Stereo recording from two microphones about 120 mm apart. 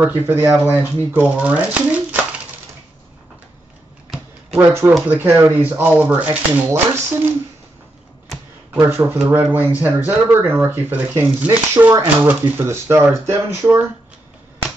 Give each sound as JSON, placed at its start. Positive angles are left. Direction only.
{"t": 0.0, "sound": "speech", "side_deg": -15}
{"t": 4.6, "sound": "speech", "side_deg": -20}
{"t": 8.8, "sound": "speech", "side_deg": -15}